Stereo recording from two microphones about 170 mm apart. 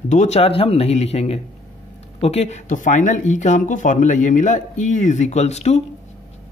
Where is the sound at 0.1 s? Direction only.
40° left (ahead or behind).